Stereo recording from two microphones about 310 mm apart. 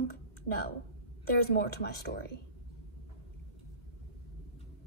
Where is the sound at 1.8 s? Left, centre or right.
Left.